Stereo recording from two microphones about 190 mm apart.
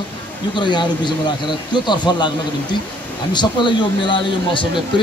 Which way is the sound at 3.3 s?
25° left (ahead or behind).